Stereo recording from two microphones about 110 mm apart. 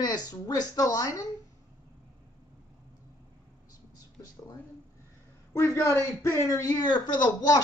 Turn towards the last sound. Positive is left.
turn(degrees=40)  # may be behind; listen again after turning